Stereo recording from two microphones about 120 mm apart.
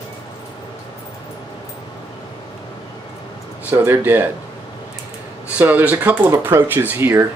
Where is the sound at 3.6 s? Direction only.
20° right (ahead or behind).